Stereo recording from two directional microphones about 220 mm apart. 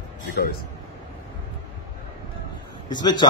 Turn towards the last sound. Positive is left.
turn(degrees=20)  # may be behind; listen again after turning